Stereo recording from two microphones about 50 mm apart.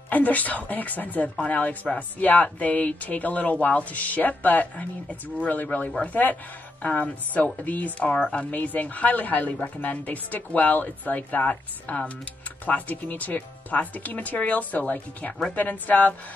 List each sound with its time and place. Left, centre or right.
0.1 s speech: left